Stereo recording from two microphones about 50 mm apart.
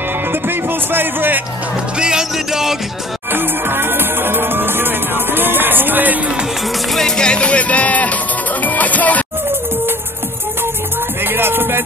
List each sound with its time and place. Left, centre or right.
0.3 s speech: right
2.0 s music: centre
3.3 s music: right
6.9 s music: centre; by 9.2 s left
11.2 s music: right